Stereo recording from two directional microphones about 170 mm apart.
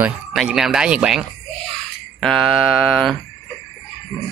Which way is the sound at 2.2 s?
Centre (ahead or behind).